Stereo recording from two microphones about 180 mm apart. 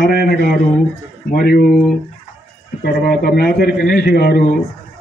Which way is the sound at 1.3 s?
60° left (ahead or behind).